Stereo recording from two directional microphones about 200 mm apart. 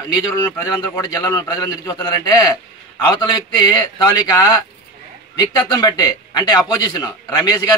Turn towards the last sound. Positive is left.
turn(degrees=20)  # may be behind; listen again after turning